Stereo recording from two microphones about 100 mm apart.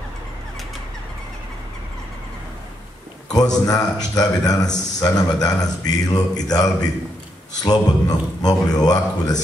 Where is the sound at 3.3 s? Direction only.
40° left (ahead or behind).